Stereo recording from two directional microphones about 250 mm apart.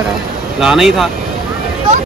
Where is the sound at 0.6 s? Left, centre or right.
Centre.